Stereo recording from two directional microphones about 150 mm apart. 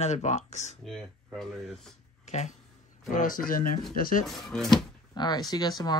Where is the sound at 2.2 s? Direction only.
50° left (ahead or behind).